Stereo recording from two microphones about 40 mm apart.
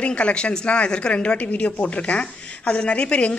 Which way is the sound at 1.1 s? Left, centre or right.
Left.